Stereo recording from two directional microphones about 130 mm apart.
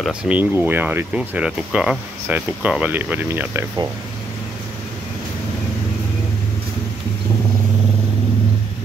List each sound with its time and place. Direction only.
0.0 s speech: 10° right (ahead or behind)